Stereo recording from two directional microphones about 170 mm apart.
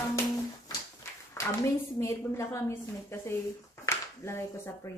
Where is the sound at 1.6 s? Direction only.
15° left (ahead or behind).